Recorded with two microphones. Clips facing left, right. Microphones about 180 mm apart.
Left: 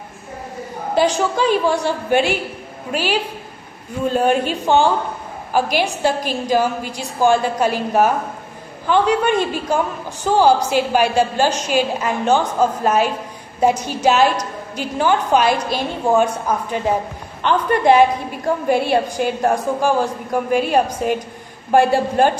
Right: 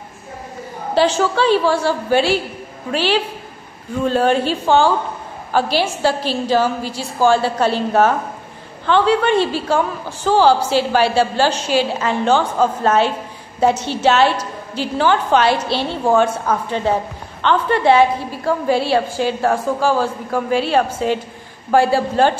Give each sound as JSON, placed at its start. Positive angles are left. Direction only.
{"t": 0.9, "sound": "a woman's voice", "side_deg": 15}